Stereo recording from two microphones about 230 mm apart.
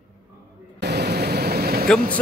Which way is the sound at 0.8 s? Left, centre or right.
Right.